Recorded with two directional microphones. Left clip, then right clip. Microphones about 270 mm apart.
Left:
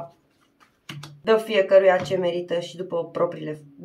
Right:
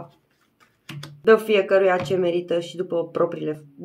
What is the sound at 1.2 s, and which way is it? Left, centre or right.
Speech, centre.